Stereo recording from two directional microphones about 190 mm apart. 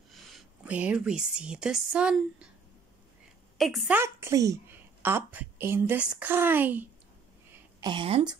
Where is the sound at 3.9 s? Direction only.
15° right (ahead or behind).